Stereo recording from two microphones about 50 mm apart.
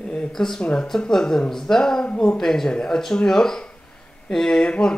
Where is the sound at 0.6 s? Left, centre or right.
Centre.